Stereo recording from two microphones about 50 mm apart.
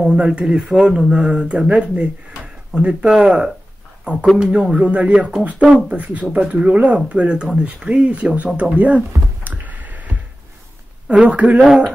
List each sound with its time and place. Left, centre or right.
0.0 s speech: centre
1.7 s speech: right
8.4 s a sound: right
11.1 s speech: right